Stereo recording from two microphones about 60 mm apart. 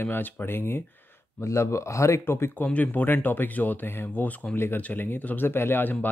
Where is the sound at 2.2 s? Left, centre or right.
Left.